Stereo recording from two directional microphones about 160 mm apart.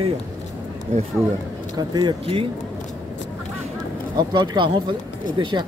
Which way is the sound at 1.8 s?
25° right (ahead or behind).